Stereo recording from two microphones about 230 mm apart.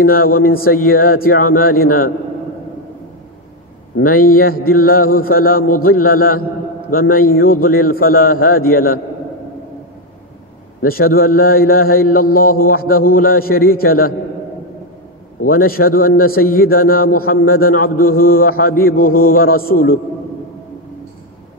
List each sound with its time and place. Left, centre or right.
0.0 s a man's voice: left
3.9 s a man's voice: left
10.8 s a man's voice: left
15.4 s a man's voice: left